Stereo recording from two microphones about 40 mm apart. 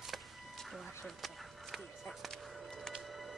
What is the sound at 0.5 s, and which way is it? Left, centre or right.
Music, centre.